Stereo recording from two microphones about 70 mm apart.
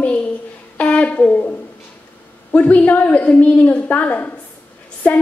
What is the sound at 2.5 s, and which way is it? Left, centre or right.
A woman's voice, left.